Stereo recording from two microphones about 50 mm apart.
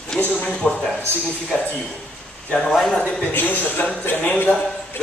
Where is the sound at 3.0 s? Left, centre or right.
Left.